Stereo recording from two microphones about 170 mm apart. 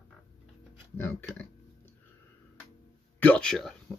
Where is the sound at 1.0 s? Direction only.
15° left (ahead or behind).